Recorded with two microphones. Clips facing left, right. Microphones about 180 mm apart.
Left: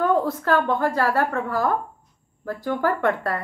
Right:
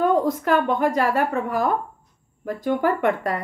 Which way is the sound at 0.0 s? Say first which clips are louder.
Right 1 dB; 15° right (ahead or behind).